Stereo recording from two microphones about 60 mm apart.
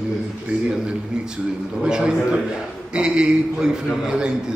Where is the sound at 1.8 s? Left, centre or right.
Centre.